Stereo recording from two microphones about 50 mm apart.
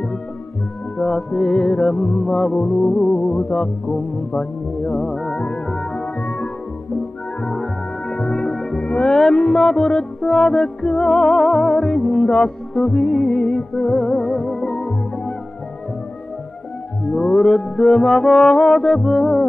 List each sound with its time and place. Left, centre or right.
0.9 s music: centre
1.8 s music: centre
2.9 s music: left
3.9 s music: centre
7.4 s music: centre
14.4 s music: centre
17.1 s music: left
17.4 s music: centre